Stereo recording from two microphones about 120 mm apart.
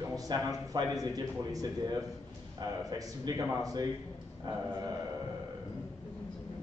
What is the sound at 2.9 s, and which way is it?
Speech, 30° right (ahead or behind).